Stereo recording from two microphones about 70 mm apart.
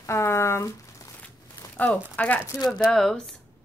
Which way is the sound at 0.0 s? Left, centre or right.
Left.